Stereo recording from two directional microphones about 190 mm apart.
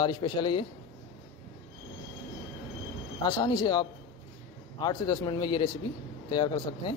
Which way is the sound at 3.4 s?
20° left (ahead or behind).